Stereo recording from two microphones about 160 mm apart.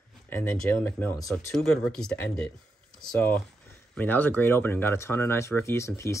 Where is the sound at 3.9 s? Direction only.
10° left (ahead or behind).